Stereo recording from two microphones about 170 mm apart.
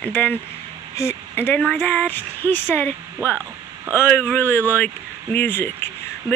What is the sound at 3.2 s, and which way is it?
Speech, 15° right (ahead or behind).